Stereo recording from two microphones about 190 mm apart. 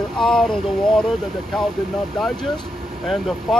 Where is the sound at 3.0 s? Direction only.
Centre (ahead or behind).